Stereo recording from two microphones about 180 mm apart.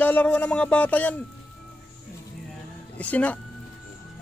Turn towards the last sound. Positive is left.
turn(degrees=10)  # may be behind; listen again after turning